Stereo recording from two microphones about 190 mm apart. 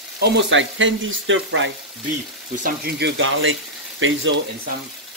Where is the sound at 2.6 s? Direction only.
60° right (ahead or behind); by 3.5 s 90° right.